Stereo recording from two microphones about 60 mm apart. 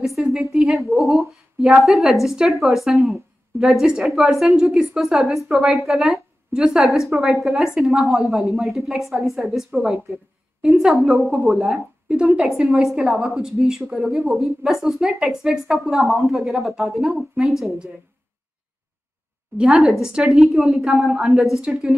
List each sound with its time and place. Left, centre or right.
0.4 s a woman's voice: centre
7.1 s a woman's voice: centre
19.5 s a woman's voice: centre
19.8 s speech: centre
21.5 s a woman's voice: centre